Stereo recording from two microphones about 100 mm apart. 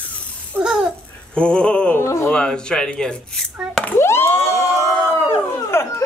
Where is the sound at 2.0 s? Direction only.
30° left (ahead or behind).